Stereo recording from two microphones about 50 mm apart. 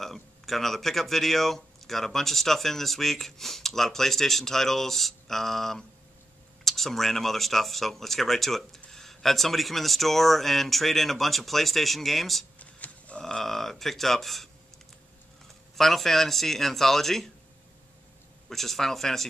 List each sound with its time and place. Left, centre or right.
0.0 s speech: centre
12.5 s a sound: left
13.2 s speech: centre
15.7 s speech: centre
18.5 s speech: centre